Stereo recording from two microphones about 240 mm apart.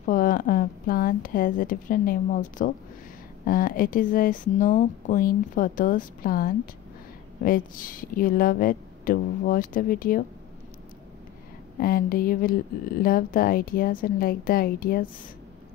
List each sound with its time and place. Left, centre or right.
0.0 s a woman's voice: left
11.8 s speech: left